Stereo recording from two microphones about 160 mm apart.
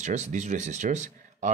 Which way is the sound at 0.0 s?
45° right (ahead or behind).